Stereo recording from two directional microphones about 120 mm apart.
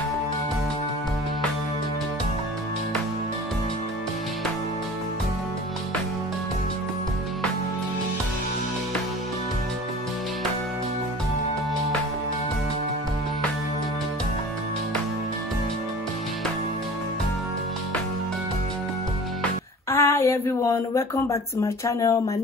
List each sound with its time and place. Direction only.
19.9 s speech: 25° left (ahead or behind)